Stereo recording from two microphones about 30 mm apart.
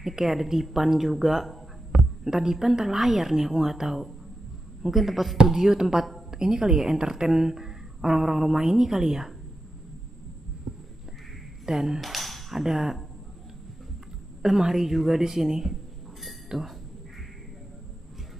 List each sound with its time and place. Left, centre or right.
0.0 s speech: centre
2.2 s a woman's voice: centre
5.5 s a woman's voice: centre
11.6 s a sound: centre
12.6 s a woman's voice: centre
14.4 s a woman's voice: centre